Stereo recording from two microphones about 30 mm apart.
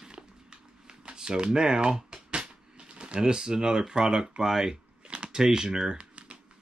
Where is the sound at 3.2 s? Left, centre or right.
Right.